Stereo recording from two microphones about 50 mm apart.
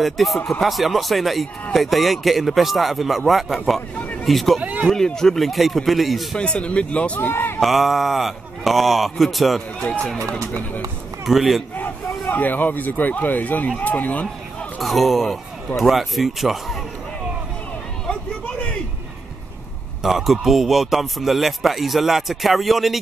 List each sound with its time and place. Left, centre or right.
0.0 s a man's voice: centre
6.3 s speech: left
7.2 s speech: left
7.6 s a man's voice: centre
11.2 s a man's voice: centre
11.7 s speech: left
14.8 s a man's voice: centre
18.0 s a sound: left
20.0 s a man's voice: centre